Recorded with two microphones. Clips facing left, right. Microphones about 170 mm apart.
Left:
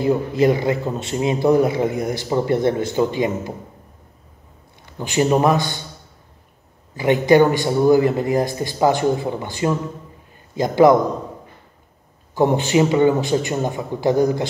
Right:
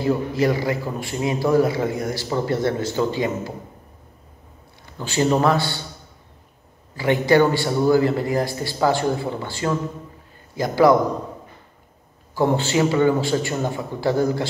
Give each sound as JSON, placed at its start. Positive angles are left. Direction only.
{"t": 0.0, "sound": "a man's voice", "side_deg": 20}
{"t": 4.9, "sound": "a man's voice", "side_deg": 15}
{"t": 7.0, "sound": "a man's voice", "side_deg": 20}
{"t": 12.4, "sound": "a man's voice", "side_deg": 20}